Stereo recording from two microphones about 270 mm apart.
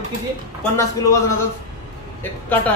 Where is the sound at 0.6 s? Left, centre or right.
Centre.